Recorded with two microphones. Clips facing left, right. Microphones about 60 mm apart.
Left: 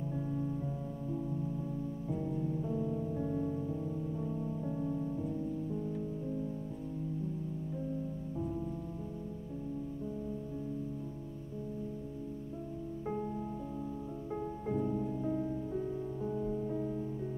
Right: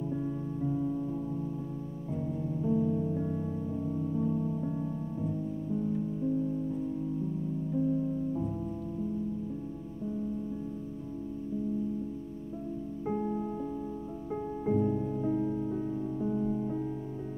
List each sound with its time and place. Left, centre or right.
0.1 s music: centre
2.1 s music: centre
13.0 s music: centre
15.7 s music: centre